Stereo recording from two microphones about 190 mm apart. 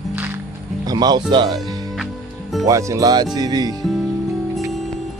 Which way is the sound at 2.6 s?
15° right (ahead or behind).